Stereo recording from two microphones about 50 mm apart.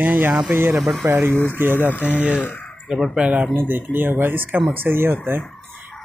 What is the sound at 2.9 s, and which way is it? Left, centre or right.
Speech, centre.